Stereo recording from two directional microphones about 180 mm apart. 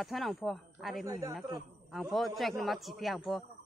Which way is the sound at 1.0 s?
15° right (ahead or behind).